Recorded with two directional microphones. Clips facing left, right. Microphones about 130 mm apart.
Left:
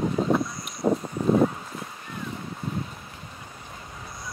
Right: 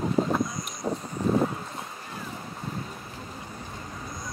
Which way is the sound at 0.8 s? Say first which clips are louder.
Left 7 dB; 55° left (ahead or behind).